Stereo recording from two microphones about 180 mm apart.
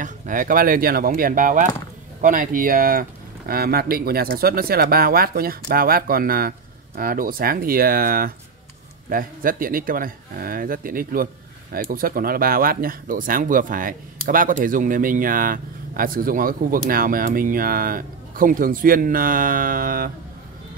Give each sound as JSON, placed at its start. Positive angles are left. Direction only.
{"t": 0.0, "sound": "speech", "side_deg": -50}